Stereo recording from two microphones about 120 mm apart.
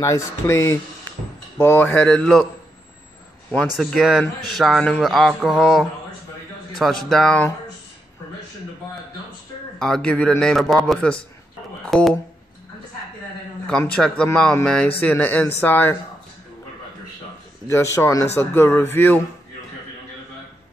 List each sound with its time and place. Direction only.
0.0 s speech: 25° left (ahead or behind); by 2.4 s 5° left (ahead or behind)
3.7 s speech: centre (ahead or behind)
9.8 s speech: 5° left (ahead or behind)
13.7 s speech: 10° left (ahead or behind)
17.6 s speech: 25° left (ahead or behind)